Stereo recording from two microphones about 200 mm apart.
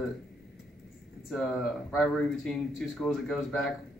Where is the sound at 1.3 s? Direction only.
Centre (ahead or behind).